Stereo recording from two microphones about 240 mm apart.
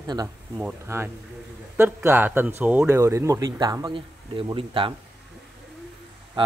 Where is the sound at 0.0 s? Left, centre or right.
Centre.